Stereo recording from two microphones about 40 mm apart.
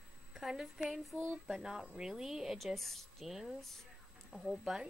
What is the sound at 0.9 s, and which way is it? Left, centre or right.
Speech, centre.